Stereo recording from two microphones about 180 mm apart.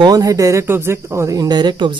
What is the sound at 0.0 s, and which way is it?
Speech, 20° right (ahead or behind).